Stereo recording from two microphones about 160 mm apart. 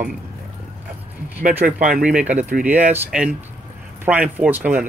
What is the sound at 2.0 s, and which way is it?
Speech, 5° right (ahead or behind).